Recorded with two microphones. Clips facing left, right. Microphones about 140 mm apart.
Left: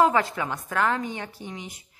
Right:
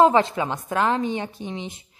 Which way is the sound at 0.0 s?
25° right (ahead or behind).